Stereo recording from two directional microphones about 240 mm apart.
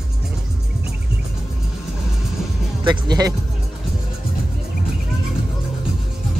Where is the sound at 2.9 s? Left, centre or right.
Centre.